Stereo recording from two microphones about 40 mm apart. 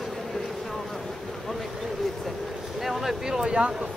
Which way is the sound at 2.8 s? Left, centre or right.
Centre.